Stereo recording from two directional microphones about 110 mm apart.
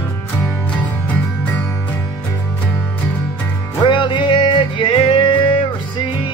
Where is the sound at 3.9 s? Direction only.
50° left (ahead or behind).